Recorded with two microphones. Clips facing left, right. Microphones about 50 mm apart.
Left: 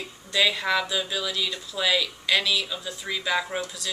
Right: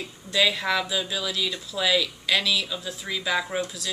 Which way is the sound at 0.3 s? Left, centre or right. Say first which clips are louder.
Even; centre.